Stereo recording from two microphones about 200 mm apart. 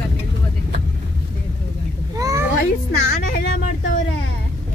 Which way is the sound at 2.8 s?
50° left (ahead or behind).